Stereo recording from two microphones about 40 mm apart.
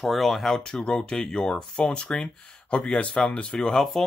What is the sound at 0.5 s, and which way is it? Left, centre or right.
Speech, centre.